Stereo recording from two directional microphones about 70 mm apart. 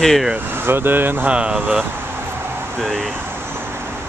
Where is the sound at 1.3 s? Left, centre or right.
Centre.